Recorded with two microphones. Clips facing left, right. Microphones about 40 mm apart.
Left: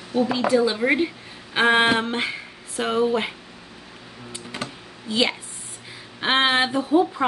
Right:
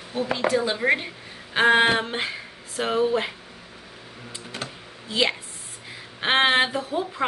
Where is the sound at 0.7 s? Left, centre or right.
Centre.